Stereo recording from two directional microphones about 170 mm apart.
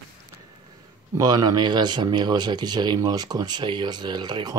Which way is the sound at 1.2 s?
25° right (ahead or behind).